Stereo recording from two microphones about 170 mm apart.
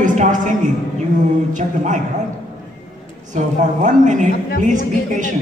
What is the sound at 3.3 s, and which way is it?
A man's voice, 45° right (ahead or behind).